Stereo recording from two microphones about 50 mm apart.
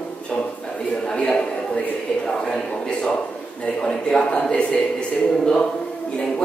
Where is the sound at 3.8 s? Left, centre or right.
Centre.